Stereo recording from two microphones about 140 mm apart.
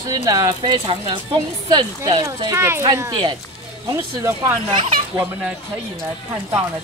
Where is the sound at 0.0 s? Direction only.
25° right (ahead or behind).